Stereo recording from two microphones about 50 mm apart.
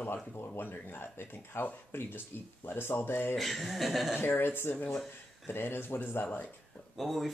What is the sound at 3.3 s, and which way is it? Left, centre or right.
Speech, centre.